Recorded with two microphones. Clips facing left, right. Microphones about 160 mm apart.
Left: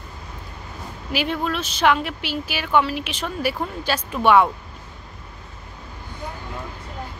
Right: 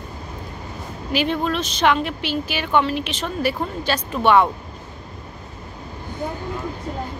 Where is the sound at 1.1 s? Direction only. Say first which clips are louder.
Right 3 dB; 5° left (ahead or behind).